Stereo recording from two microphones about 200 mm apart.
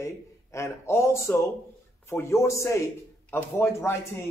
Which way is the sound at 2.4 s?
15° left (ahead or behind).